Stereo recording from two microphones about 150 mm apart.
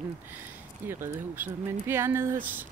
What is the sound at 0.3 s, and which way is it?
Speech, 15° right (ahead or behind).